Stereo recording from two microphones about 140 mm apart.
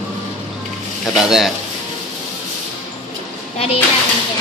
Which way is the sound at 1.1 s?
5° right (ahead or behind).